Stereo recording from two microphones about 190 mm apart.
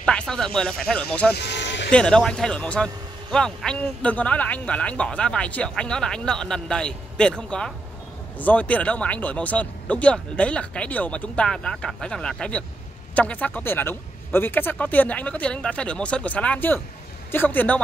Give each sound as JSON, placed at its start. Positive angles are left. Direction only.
{"t": 0.0, "sound": "a man's voice", "side_deg": 5}
{"t": 1.3, "sound": "vehicle", "side_deg": 65}
{"t": 1.9, "sound": "a man's voice", "side_deg": 5}